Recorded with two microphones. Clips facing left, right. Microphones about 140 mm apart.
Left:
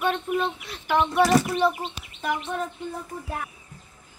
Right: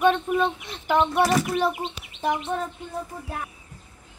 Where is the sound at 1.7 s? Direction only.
25° right (ahead or behind).